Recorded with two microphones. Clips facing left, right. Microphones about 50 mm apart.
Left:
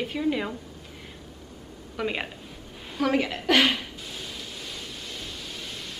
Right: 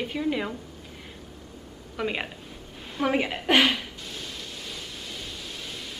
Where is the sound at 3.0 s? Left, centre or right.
Centre.